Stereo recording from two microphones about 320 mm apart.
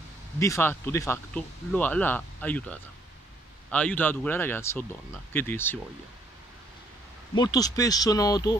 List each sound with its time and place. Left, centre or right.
0.4 s speech: centre
7.3 s speech: centre